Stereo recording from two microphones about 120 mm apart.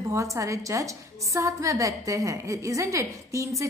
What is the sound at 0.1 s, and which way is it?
A woman's voice, 25° right (ahead or behind).